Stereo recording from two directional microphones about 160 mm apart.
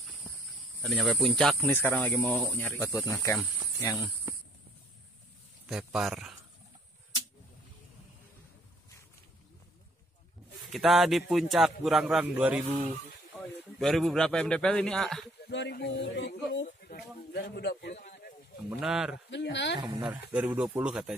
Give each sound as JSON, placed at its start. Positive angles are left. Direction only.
{"t": 0.8, "sound": "a man's voice", "side_deg": 0}
{"t": 1.6, "sound": "speech", "side_deg": 10}
{"t": 5.7, "sound": "a man's voice", "side_deg": -5}
{"t": 10.7, "sound": "a man's voice", "side_deg": 0}
{"t": 12.6, "sound": "speech", "side_deg": -40}
{"t": 13.7, "sound": "a man's voice", "side_deg": 0}
{"t": 15.4, "sound": "speech", "side_deg": 90}
{"t": 17.9, "sound": "a sound", "side_deg": 65}
{"t": 18.7, "sound": "a man's voice", "side_deg": -5}
{"t": 19.3, "sound": "speech", "side_deg": 90}
{"t": 20.0, "sound": "speech", "side_deg": -10}